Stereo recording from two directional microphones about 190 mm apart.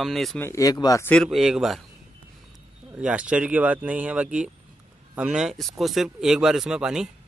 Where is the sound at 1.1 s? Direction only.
Centre (ahead or behind).